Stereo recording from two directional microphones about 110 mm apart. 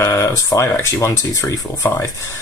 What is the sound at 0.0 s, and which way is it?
Speech, 25° left (ahead or behind).